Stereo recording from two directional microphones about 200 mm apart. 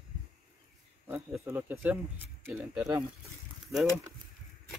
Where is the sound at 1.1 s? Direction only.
10° right (ahead or behind).